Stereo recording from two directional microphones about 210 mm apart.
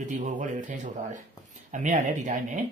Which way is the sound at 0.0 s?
35° right (ahead or behind).